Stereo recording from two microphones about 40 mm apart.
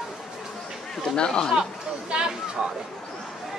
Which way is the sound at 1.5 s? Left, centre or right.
Centre.